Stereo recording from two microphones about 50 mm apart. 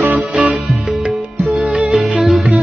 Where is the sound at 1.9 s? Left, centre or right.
Centre.